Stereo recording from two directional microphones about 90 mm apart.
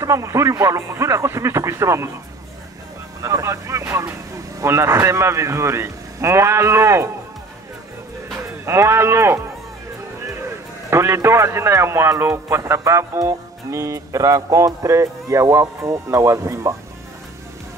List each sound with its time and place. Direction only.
0.0 s a man's voice: 35° right (ahead or behind)
3.2 s a man's voice: 35° right (ahead or behind)
8.6 s speech: 30° right (ahead or behind)
10.9 s a man's voice: 30° right (ahead or behind)